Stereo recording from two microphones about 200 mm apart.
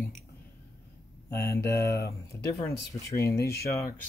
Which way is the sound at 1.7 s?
55° left (ahead or behind).